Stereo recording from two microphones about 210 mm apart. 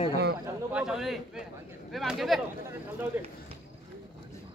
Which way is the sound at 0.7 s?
5° right (ahead or behind).